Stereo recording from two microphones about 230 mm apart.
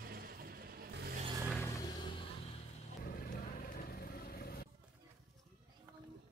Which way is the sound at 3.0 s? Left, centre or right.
Left.